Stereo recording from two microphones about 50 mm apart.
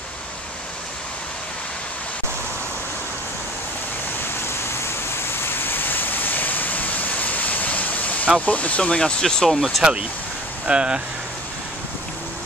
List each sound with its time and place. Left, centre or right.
5.5 s vehicle: left
8.4 s speech: left
9.2 s speech: centre
10.7 s speech: right